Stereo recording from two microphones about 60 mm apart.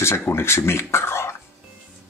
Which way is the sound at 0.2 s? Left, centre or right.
Left.